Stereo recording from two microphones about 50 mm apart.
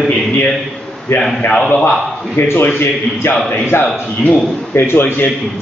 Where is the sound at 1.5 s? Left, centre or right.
Centre.